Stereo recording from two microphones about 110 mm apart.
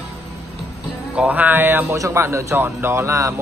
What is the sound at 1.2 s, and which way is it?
A man's voice, 15° right (ahead or behind).